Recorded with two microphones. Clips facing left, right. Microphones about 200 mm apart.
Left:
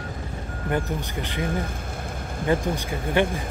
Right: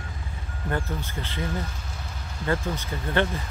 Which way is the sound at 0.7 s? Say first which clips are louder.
Left 3 dB; 15° left (ahead or behind).